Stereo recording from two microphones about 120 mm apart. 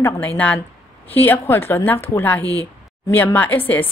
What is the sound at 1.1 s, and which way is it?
A woman's voice, 15° left (ahead or behind).